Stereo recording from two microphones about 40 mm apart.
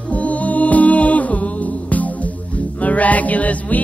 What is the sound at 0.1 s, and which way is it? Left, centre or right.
Music, left.